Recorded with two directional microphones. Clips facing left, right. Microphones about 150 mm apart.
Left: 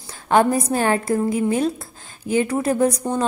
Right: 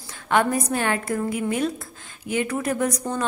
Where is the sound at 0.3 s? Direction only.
30° left (ahead or behind).